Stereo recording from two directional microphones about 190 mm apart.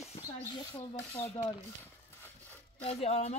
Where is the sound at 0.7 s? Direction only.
15° left (ahead or behind).